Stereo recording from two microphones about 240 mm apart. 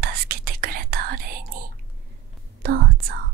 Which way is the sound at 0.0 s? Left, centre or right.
Right.